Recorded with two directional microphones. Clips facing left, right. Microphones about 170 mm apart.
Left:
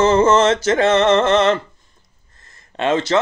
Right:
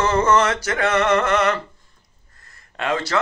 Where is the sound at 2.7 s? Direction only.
25° left (ahead or behind).